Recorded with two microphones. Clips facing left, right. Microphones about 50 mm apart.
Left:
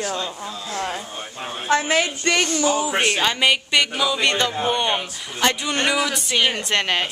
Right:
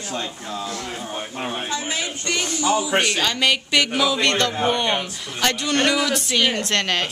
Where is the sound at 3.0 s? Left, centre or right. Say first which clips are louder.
Left 1 dB; left.